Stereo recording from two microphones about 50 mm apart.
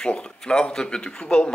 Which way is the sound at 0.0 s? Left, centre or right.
Centre.